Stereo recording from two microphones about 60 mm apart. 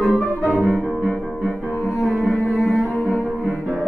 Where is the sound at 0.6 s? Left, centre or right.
Left.